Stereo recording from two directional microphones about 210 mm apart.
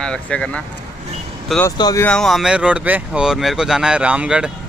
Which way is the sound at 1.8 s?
20° left (ahead or behind).